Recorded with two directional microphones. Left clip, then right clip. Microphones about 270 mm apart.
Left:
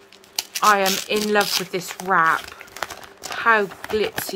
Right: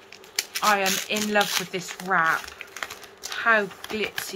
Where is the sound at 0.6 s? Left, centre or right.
Left.